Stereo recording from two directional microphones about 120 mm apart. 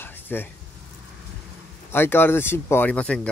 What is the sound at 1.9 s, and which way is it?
Speech, 20° left (ahead or behind).